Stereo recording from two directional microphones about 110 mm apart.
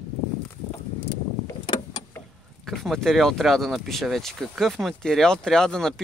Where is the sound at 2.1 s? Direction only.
20° left (ahead or behind).